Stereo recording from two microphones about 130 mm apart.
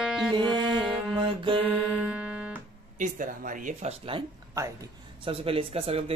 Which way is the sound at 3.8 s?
45° right (ahead or behind).